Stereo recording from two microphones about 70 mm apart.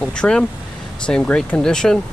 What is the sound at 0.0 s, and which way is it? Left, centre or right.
Speech, centre.